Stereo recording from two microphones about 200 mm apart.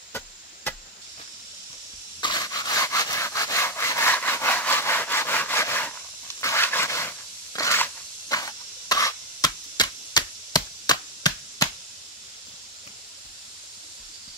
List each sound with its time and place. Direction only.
0.7 s chop: 10° left (ahead or behind)
2.1 s sawing: 20° left (ahead or behind)
6.4 s a sound: 10° left (ahead or behind)